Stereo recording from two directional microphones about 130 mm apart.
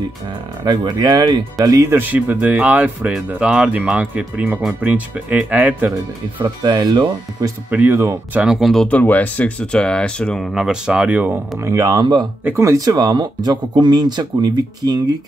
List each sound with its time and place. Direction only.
0.7 s speech: 30° right (ahead or behind)
2.0 s speech: 15° right (ahead or behind)
6.4 s speech: 35° right (ahead or behind)
7.7 s speech: 15° right (ahead or behind)
8.4 s speech: 5° right (ahead or behind)
8.8 s speech: 10° left (ahead or behind); by 11.3 s 10° right (ahead or behind)
11.5 s speech: 25° right (ahead or behind)
12.4 s speech: 20° right (ahead or behind)